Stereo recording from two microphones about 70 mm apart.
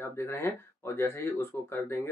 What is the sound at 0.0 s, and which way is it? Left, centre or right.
Speech, left.